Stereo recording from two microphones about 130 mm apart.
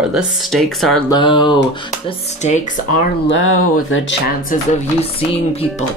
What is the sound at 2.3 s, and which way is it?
Speech, 65° left (ahead or behind).